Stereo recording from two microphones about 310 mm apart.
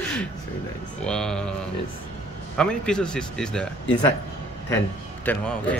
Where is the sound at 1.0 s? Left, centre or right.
Centre.